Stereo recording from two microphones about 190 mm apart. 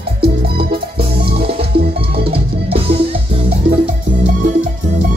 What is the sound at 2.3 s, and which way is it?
Music, 30° right (ahead or behind).